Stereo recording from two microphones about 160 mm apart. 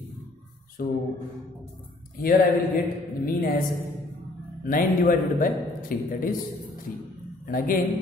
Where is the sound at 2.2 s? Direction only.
60° left (ahead or behind).